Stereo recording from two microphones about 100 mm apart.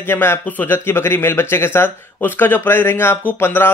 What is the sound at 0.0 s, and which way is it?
Speech, 25° left (ahead or behind).